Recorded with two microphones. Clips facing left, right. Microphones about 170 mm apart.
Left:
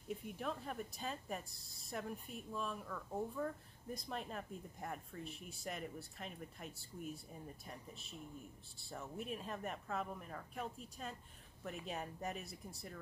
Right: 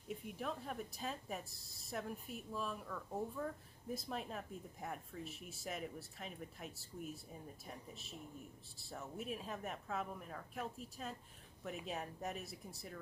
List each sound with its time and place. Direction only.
0.1 s speech: centre (ahead or behind)